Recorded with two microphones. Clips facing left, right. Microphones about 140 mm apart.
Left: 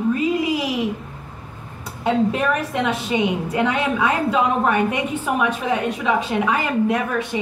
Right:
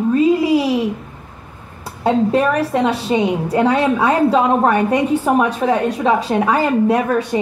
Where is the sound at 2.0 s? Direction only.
35° right (ahead or behind).